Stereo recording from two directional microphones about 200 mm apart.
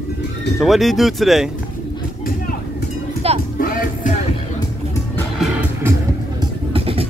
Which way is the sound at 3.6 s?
45° left (ahead or behind).